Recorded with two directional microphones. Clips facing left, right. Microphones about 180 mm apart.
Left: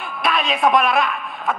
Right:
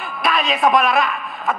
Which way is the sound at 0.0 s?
Centre (ahead or behind).